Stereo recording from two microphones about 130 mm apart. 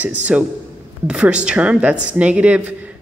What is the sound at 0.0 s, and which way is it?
A woman's voice, 10° right (ahead or behind).